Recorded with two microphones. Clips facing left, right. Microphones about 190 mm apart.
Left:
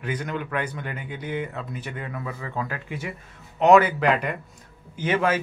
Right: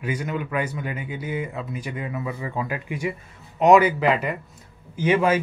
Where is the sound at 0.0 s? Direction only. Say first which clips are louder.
Right 2 dB; 10° right (ahead or behind).